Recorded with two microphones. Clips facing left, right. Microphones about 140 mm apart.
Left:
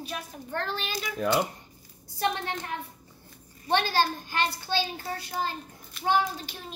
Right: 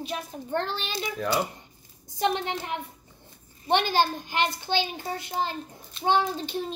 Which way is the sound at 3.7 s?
20° right (ahead or behind).